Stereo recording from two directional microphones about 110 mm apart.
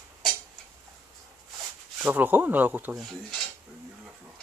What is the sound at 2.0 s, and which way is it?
Speech, 15° right (ahead or behind).